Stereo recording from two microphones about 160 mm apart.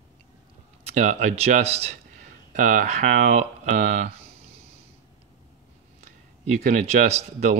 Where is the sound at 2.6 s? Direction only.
50° right (ahead or behind).